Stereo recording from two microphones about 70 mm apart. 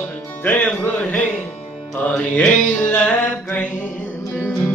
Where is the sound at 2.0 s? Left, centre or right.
Left.